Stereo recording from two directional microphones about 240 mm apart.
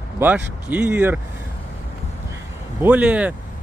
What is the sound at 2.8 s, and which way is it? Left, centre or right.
Speech, centre.